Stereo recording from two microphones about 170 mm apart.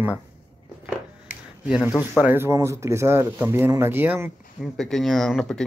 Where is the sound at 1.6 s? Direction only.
5° right (ahead or behind).